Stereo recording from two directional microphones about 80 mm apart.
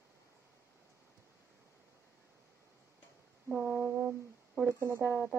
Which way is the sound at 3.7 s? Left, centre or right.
Right.